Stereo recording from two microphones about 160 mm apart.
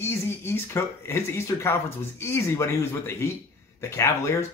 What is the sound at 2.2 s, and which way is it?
Speech, 15° left (ahead or behind).